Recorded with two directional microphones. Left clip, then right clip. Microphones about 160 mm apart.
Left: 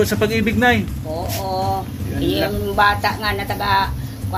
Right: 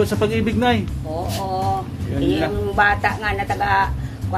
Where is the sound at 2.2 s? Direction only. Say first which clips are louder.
Even; centre (ahead or behind).